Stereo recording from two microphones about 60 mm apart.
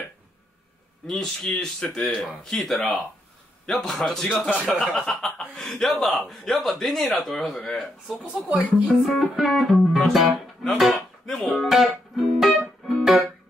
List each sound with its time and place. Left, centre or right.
1.0 s speech: centre
8.5 s speech: right
9.0 s speech: centre
9.8 s music: centre
10.8 s a sound: centre
11.4 s speech: centre
12.2 s music: centre